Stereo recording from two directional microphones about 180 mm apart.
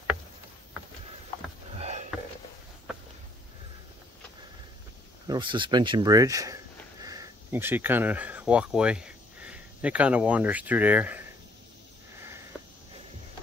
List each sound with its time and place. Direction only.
1.8 s sniff: 40° right (ahead or behind)
5.3 s speech: 25° right (ahead or behind); by 11.2 s 10° right (ahead or behind)